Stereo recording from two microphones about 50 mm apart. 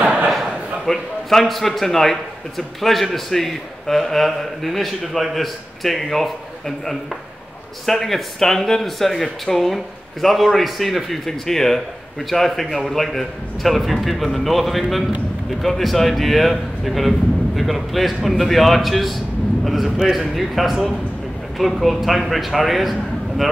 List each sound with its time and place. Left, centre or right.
0.0 s a sound: right
0.3 s a man's voice: centre
7.8 s a man's voice: centre